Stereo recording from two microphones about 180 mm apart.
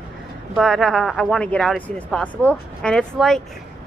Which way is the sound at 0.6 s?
Centre (ahead or behind).